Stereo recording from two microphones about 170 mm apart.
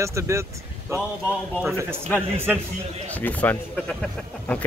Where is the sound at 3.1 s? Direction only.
10° left (ahead or behind).